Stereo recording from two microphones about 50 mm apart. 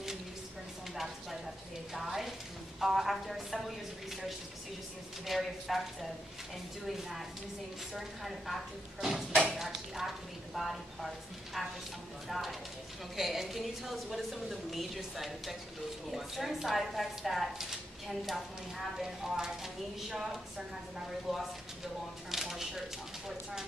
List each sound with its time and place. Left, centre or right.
0.9 s a sound: centre
2.0 s a woman's voice: centre
5.2 s a woman's voice: centre
6.9 s a woman's voice: centre
12.3 s a woman's voice: centre
22.3 s a sound: centre